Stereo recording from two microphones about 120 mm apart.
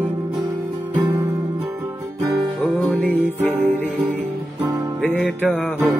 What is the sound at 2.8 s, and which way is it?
Music, 15° left (ahead or behind).